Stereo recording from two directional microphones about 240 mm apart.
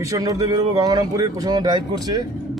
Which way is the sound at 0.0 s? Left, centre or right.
Centre.